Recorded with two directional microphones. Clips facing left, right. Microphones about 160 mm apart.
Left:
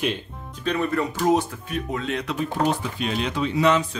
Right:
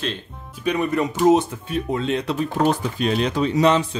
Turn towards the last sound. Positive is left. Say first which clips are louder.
# right 3 dB
turn(degrees=-35)  # may be behind; listen again after turning